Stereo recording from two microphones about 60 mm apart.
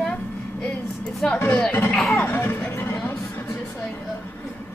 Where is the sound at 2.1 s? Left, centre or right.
Left.